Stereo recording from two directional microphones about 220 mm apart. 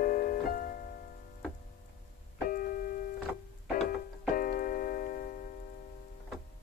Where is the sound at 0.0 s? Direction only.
40° left (ahead or behind).